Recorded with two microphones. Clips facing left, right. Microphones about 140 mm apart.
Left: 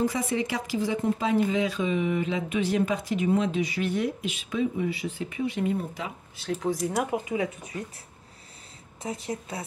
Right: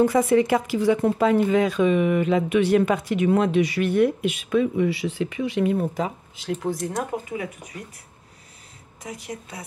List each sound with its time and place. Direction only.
0.0 s speech: 55° right (ahead or behind); by 5.9 s 75° right (ahead or behind)
6.5 s speech: centre (ahead or behind)
7.3 s a woman's voice: 25° left (ahead or behind)
9.0 s a woman's voice: 30° left (ahead or behind)